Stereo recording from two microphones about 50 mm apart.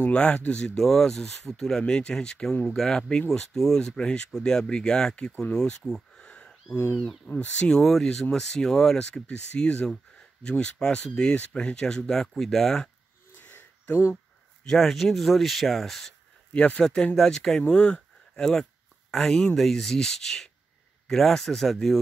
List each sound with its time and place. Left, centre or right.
0.0 s speech: left
0.7 s speech: centre; by 7.7 s left
7.7 s speech: centre
9.1 s speech: left
11.7 s speech: centre
13.4 s a sound: left
14.1 s a sound: centre
14.8 s speech: centre
16.5 s speech: left
16.8 s speech: centre
17.6 s speech: centre